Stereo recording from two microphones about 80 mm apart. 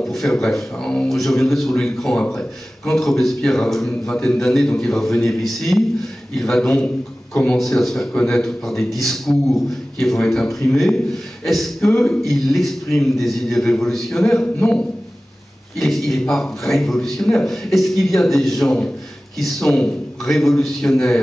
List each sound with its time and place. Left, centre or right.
0.0 s a man's voice: centre